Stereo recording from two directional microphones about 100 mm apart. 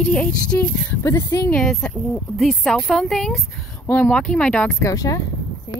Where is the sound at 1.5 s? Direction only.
5° left (ahead or behind).